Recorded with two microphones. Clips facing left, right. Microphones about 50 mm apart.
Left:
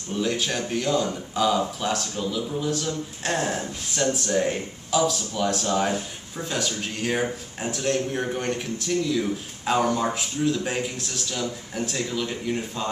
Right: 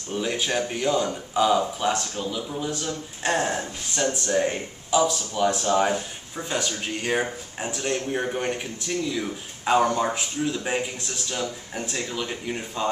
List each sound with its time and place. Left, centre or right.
0.1 s speech: centre